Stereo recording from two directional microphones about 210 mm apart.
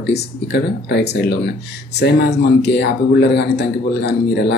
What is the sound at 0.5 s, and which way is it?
A man's voice, 55° left (ahead or behind).